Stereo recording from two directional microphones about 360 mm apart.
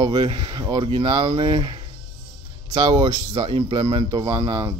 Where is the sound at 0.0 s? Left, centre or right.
Centre.